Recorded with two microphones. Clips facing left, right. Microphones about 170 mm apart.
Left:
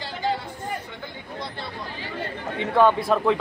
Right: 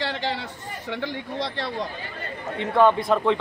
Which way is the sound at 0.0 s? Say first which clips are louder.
Even; 85° right.